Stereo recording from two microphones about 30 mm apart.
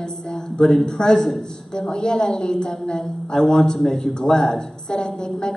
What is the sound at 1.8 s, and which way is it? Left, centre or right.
A woman's voice, left.